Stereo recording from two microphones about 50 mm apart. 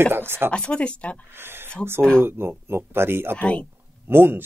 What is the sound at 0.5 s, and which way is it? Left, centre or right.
Speech, left.